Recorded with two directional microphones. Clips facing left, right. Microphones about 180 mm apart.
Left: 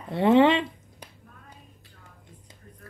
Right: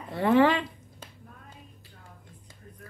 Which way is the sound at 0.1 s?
25° left (ahead or behind).